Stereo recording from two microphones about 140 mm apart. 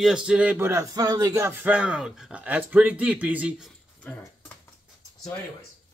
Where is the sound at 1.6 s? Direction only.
10° right (ahead or behind).